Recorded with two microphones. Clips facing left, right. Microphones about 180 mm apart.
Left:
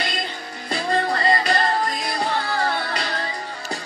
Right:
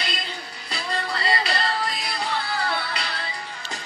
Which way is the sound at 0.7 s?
50° left (ahead or behind).